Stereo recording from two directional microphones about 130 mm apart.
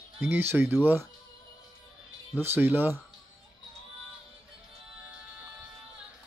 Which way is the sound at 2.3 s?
15° right (ahead or behind).